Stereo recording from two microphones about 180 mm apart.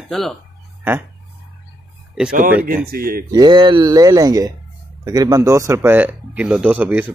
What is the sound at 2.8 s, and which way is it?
Speech, 55° right (ahead or behind).